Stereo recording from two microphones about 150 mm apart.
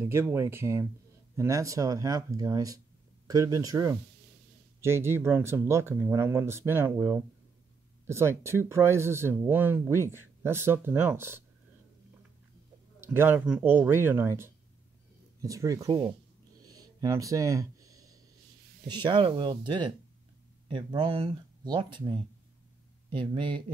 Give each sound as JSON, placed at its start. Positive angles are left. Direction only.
{"t": 0.0, "sound": "speech", "side_deg": -15}
{"t": 13.0, "sound": "speech", "side_deg": -15}
{"t": 16.6, "sound": "a sound", "side_deg": -25}
{"t": 19.0, "sound": "speech", "side_deg": -35}